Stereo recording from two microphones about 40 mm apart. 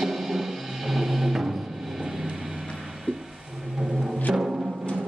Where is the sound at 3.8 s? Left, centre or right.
Centre.